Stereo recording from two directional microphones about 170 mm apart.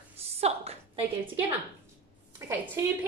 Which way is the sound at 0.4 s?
35° right (ahead or behind).